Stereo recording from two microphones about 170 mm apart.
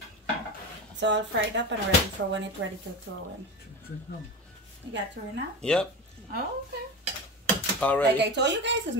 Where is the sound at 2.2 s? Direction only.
80° right.